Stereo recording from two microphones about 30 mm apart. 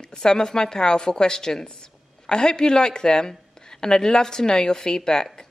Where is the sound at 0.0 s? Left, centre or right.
Left.